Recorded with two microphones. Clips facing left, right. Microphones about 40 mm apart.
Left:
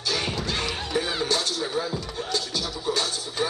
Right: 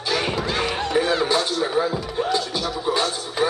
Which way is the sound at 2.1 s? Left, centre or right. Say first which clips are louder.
Right 7 dB; centre.